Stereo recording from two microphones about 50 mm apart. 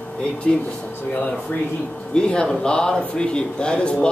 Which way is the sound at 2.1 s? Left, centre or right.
Centre.